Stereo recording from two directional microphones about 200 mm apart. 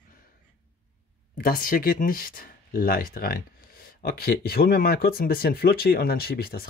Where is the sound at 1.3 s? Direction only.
45° left (ahead or behind).